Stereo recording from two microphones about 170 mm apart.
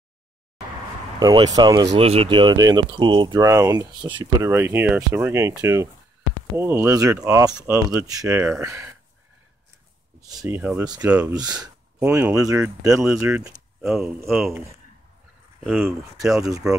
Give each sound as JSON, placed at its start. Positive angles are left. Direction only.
{"t": 1.2, "sound": "speech", "side_deg": -25}
{"t": 2.0, "sound": "speech", "side_deg": -35}
{"t": 3.4, "sound": "speech", "side_deg": -15}
{"t": 10.2, "sound": "speech", "side_deg": -20}
{"t": 11.1, "sound": "speech", "side_deg": -10}
{"t": 11.3, "sound": "speech", "side_deg": -25}
{"t": 12.0, "sound": "speech", "side_deg": -10}
{"t": 12.3, "sound": "speech", "side_deg": -20}
{"t": 13.8, "sound": "speech", "side_deg": 0}
{"t": 15.6, "sound": "speech", "side_deg": -10}